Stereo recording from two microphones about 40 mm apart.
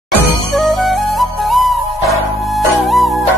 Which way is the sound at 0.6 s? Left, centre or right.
Centre.